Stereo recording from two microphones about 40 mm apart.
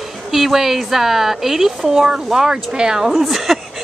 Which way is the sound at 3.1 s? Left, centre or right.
Centre.